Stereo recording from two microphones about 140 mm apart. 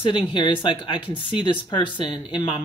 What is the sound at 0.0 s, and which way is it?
Speech, 35° left (ahead or behind).